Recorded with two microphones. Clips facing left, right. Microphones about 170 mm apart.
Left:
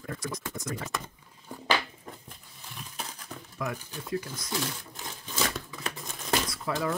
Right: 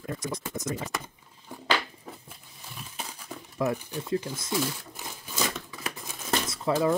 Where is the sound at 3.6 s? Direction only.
30° right (ahead or behind).